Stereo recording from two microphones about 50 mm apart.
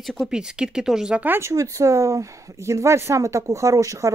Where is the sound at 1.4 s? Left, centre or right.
Right.